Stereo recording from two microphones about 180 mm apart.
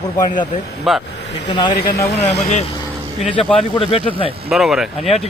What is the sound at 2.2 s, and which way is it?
Speech, 40° left (ahead or behind).